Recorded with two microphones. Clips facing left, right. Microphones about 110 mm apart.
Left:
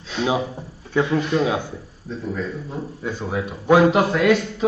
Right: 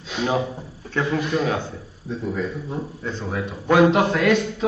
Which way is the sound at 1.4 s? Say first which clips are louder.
Left 2 dB; 10° left (ahead or behind).